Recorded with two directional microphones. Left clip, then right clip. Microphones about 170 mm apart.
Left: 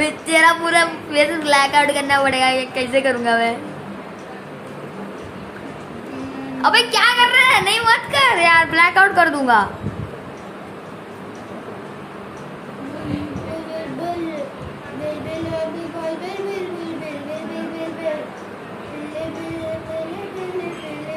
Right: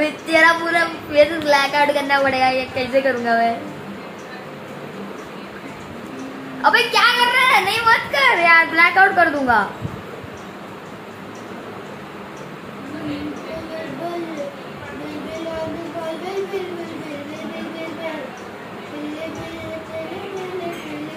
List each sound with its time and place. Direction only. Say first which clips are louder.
0.0 s female singing: even; 10° left (ahead or behind)
6.6 s female singing: even; 10° left (ahead or behind)